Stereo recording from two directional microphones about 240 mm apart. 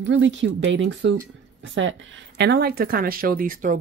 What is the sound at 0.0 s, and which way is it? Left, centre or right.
Speech, right.